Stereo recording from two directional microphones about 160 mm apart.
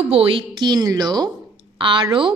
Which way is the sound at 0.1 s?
35° right (ahead or behind).